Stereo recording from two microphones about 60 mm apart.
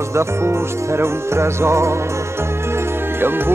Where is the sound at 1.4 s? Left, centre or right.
Right.